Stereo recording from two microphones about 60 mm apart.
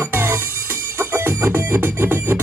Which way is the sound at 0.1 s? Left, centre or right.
Right.